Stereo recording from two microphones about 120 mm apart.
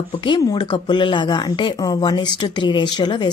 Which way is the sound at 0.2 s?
40° left (ahead or behind).